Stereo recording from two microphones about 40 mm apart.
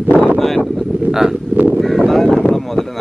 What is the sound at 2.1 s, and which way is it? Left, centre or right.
Speech, centre.